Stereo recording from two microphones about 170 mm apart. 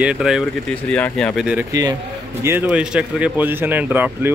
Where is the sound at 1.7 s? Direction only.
20° right (ahead or behind).